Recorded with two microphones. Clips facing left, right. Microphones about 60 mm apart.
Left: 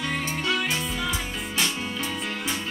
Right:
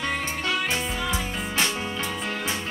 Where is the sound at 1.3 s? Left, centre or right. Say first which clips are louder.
Right 2 dB; right.